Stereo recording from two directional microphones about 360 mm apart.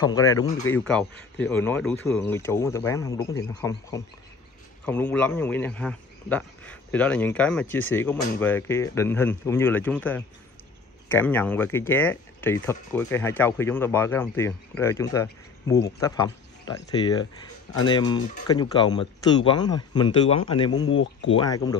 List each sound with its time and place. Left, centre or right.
0.3 s a man's voice: centre
20.9 s speech: left